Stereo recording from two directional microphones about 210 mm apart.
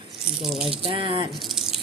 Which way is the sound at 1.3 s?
Centre (ahead or behind).